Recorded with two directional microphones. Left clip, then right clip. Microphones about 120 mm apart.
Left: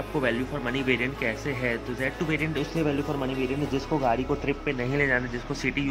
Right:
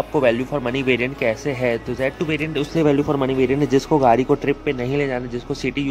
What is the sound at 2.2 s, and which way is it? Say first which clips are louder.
Speech: right 5 dB; 30° right (ahead or behind).